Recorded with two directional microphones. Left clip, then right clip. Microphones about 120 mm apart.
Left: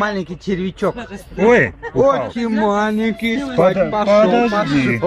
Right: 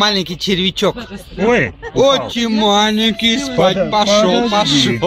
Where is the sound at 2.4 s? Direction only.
30° right (ahead or behind).